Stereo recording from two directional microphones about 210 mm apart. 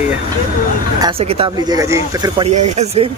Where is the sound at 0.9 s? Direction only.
25° right (ahead or behind).